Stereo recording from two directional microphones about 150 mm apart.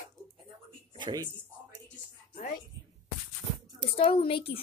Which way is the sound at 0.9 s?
30° right (ahead or behind).